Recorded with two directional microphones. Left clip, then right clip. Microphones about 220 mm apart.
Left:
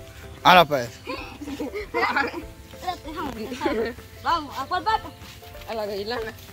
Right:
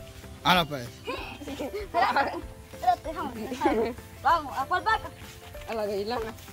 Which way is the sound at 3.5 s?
50° right (ahead or behind).